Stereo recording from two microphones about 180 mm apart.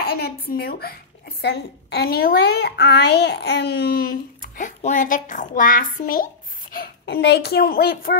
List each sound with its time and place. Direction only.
0.0 s speech: 55° left (ahead or behind)
6.7 s speech: 65° left (ahead or behind)